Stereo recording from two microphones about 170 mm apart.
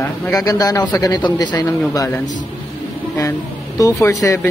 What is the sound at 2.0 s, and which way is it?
A man's voice, 10° left (ahead or behind).